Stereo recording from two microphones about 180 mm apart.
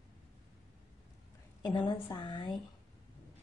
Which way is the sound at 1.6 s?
25° left (ahead or behind).